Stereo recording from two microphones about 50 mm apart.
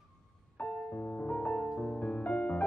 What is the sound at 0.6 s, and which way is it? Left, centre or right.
Music, left.